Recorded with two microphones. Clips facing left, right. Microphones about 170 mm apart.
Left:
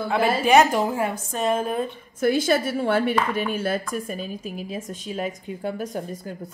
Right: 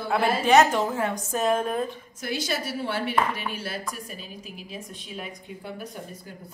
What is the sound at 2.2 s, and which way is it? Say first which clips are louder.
A woman's voice: left 10 dB; 50° left (ahead or behind).